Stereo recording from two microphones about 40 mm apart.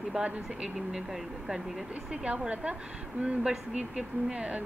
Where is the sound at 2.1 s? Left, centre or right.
Right.